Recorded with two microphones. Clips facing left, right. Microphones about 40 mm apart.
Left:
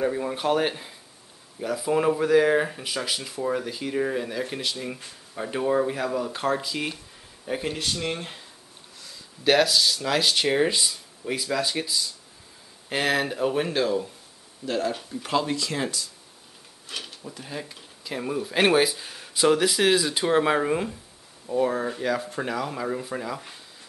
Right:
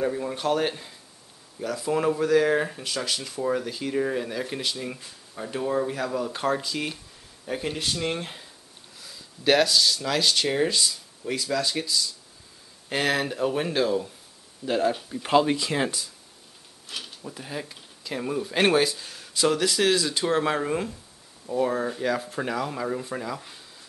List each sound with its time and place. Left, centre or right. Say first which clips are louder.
0.0 s speech: left 1 dB; centre
4.9 s speech: left 3 dB; centre
6.1 s speech: even; centre
14.7 s speech: right 3 dB; centre
15.0 s speech: right 4 dB; right
16.8 s a sound: left 1 dB; centre
17.2 s speech: right 1 dB; centre